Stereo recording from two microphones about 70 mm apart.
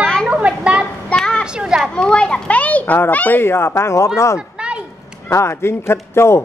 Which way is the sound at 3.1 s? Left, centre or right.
Left.